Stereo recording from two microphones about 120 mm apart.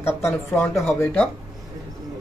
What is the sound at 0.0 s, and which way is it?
Speech, 20° left (ahead or behind).